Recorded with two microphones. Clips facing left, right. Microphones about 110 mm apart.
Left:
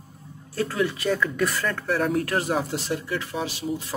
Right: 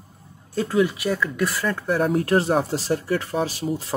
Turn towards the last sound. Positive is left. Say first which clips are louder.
# right 3 dB
turn(degrees=-35)  # may be behind; listen again after turning